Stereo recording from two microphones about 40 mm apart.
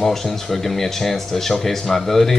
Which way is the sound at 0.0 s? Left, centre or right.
Centre.